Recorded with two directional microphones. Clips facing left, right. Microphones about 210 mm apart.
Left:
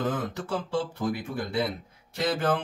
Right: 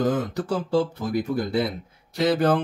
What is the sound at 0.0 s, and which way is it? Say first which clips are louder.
Speech: right 6 dB; 40° right (ahead or behind).